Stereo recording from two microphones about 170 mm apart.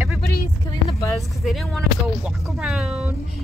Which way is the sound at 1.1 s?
5° left (ahead or behind).